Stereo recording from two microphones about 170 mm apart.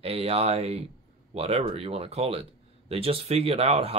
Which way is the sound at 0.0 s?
35° right (ahead or behind).